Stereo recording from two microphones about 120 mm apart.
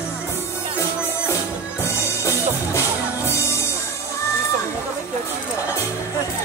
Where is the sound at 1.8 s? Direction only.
25° left (ahead or behind).